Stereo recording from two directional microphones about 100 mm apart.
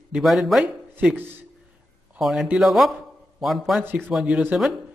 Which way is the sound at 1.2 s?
20° right (ahead or behind).